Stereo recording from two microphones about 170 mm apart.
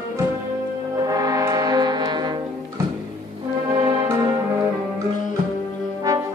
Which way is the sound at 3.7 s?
25° right (ahead or behind).